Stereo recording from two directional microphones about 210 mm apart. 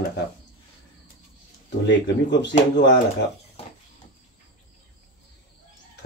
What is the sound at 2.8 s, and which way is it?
Speech, 55° left (ahead or behind).